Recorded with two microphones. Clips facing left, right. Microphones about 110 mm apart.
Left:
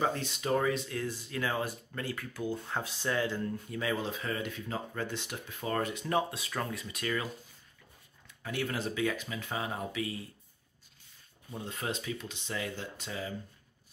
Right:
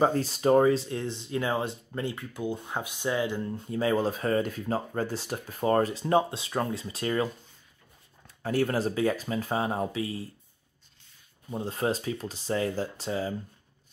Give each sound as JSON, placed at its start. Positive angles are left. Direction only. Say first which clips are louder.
{"t": 0.0, "sound": "speech", "louder": "right 8 dB", "side_deg": -40}
{"t": 8.4, "sound": "speech", "louder": "right 8 dB", "side_deg": -40}
{"t": 11.5, "sound": "speech", "louder": "right 8 dB", "side_deg": -35}